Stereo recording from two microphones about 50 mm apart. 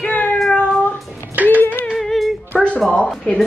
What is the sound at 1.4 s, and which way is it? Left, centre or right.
Music, left.